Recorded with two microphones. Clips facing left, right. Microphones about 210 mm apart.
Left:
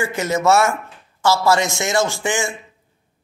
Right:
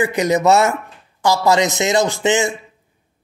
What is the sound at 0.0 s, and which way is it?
Speech, 15° right (ahead or behind).